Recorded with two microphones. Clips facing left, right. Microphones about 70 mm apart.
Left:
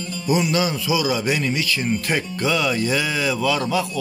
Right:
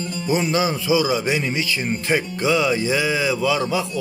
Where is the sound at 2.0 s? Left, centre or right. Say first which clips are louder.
Right 2 dB; centre.